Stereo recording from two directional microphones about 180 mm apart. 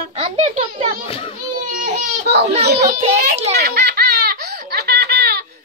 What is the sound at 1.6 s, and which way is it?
Baby cry, 45° right (ahead or behind).